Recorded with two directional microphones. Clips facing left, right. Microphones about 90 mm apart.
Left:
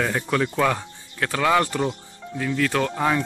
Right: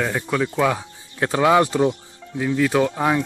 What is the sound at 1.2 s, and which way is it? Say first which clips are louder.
Speech: right 4 dB; 20° right (ahead or behind).